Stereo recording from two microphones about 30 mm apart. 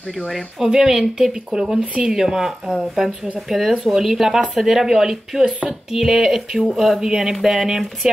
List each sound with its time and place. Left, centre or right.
0.7 s speech: centre
7.2 s speech: centre